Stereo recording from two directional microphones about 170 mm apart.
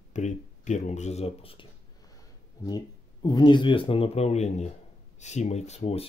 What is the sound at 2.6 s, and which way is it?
Speech, 25° left (ahead or behind).